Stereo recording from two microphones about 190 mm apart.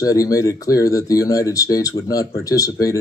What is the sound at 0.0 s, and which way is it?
Speech, 20° left (ahead or behind).